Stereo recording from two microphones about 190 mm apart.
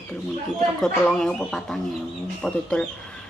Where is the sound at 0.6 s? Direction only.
5° left (ahead or behind).